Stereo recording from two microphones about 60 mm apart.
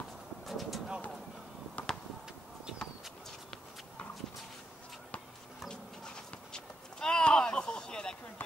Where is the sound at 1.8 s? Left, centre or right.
Left.